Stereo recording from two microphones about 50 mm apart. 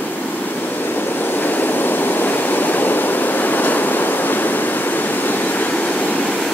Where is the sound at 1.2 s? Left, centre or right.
Left.